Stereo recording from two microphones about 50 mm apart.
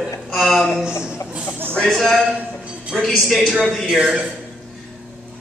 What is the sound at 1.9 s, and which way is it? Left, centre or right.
Speech, centre.